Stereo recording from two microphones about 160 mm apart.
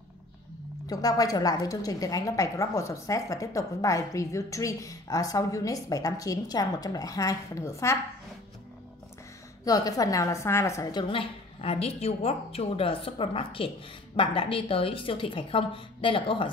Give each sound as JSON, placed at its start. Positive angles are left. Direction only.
{"t": 0.8, "sound": "a woman's voice", "side_deg": 20}
{"t": 9.7, "sound": "a woman's voice", "side_deg": 20}